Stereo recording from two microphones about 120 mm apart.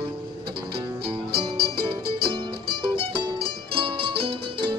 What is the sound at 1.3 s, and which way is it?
Music, 45° right (ahead or behind).